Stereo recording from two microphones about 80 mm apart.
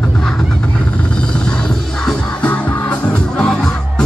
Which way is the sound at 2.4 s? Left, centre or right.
Centre.